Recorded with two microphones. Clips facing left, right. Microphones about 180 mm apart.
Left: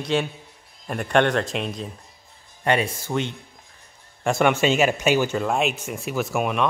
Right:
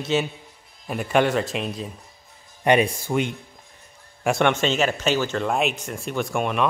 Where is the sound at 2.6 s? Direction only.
15° right (ahead or behind).